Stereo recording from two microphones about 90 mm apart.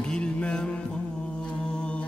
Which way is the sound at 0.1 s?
15° left (ahead or behind).